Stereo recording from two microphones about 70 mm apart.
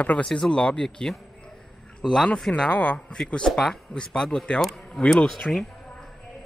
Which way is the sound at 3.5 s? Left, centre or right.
Centre.